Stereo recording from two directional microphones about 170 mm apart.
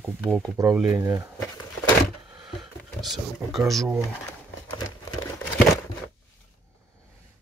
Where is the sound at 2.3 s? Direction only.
Centre (ahead or behind).